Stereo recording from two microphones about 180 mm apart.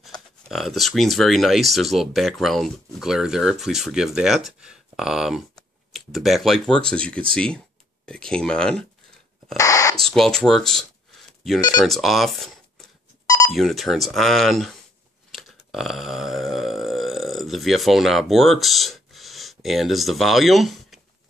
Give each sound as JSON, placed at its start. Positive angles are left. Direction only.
{"t": 0.5, "sound": "speech", "side_deg": 0}
{"t": 9.6, "sound": "owl", "side_deg": 20}
{"t": 9.9, "sound": "speech", "side_deg": 0}
{"t": 15.3, "sound": "burping", "side_deg": 0}